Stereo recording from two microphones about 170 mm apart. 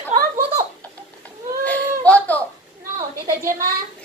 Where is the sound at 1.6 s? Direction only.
10° left (ahead or behind).